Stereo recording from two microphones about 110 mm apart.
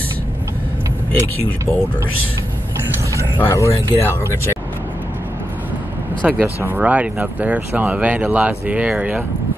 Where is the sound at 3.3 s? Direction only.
20° left (ahead or behind).